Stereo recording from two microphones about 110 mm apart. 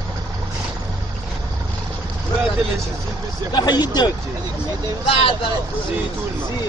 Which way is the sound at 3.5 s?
40° left (ahead or behind).